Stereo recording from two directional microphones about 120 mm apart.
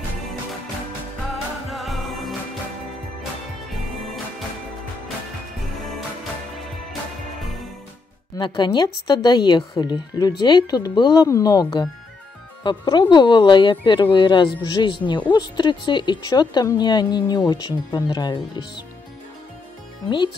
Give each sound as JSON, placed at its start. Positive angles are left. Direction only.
{"t": 1.3, "sound": "music", "side_deg": 0}
{"t": 8.4, "sound": "speech", "side_deg": 40}
{"t": 12.6, "sound": "speech", "side_deg": 40}